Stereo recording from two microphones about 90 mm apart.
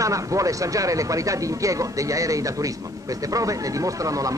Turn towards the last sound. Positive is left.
turn(degrees=-40)  # may be behind; listen again after turning